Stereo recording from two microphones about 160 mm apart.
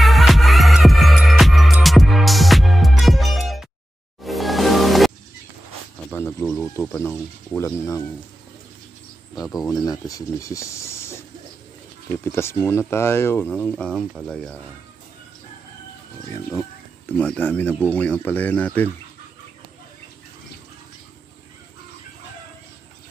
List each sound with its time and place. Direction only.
0.0 s music: centre (ahead or behind)
6.1 s a sound: 10° left (ahead or behind)
6.8 s speech: 10° left (ahead or behind)
9.7 s speech: 20° left (ahead or behind); by 14.6 s 5° left (ahead or behind)
16.3 s speech: 20° left (ahead or behind)
17.2 s speech: 10° left (ahead or behind)